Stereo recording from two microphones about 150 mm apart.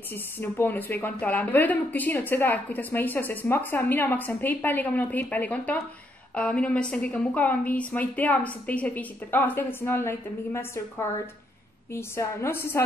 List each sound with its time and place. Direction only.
0.1 s a woman's voice: 15° left (ahead or behind)